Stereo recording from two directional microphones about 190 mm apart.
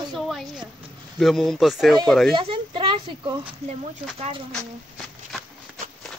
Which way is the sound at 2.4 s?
25° right (ahead or behind).